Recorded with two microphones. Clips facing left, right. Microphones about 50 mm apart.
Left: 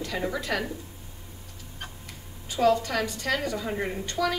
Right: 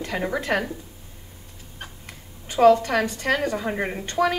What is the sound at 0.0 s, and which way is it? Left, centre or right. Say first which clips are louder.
Speech: right 4 dB; right.